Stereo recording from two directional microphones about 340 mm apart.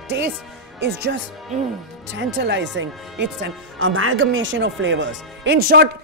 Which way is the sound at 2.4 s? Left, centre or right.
Right.